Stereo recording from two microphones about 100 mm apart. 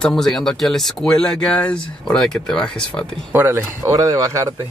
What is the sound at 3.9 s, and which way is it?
Speech, 35° right (ahead or behind).